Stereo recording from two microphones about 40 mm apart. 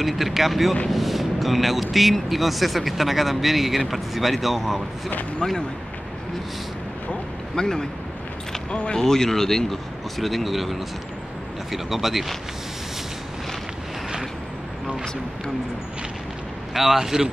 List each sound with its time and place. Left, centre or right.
0.0 s speech: centre
7.5 s speech: centre
8.9 s speech: centre
16.7 s speech: centre